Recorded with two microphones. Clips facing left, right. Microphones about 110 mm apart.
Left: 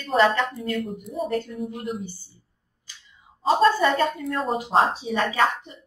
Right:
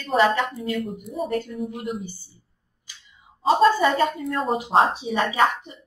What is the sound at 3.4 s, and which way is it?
A woman's voice, 5° right (ahead or behind).